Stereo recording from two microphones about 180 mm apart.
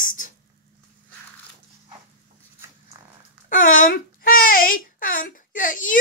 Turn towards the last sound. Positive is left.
turn(degrees=50)  # may be behind; listen again after turning